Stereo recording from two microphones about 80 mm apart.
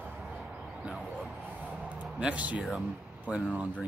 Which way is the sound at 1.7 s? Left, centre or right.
Centre.